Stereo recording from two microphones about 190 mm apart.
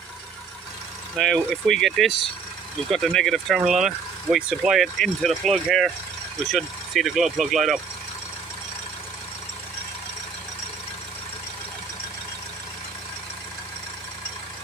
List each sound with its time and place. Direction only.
1.1 s speech: centre (ahead or behind)